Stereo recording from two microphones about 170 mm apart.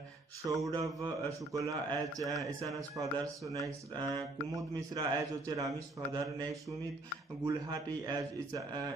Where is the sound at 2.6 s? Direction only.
20° right (ahead or behind).